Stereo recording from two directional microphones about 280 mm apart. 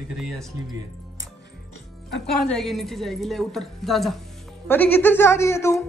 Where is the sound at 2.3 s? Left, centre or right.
Centre.